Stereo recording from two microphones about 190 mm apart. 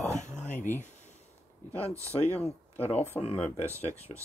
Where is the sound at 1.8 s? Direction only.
15° right (ahead or behind).